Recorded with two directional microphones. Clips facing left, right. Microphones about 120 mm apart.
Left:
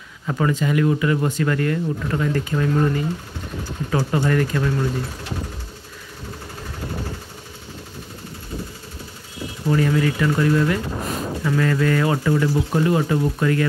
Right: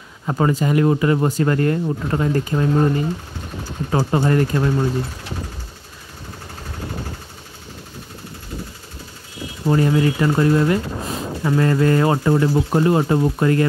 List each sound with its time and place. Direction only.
0.3 s speech: 35° right (ahead or behind)
9.7 s speech: 30° right (ahead or behind)